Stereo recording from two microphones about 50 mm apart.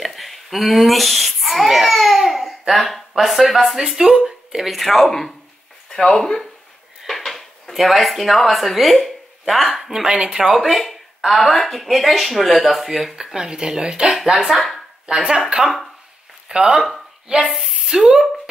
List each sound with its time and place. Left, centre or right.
0.0 s a sound: centre
2.7 s speech: centre
3.8 s speech: centre
5.9 s a sound: centre
7.0 s speech: centre
10.4 s speech: centre
13.1 s speech: centre
14.1 s speech: centre
16.4 s speech: centre
17.5 s speech: centre